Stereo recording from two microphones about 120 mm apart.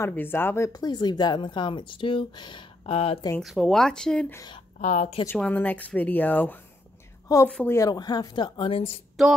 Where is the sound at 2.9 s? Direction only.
55° left (ahead or behind).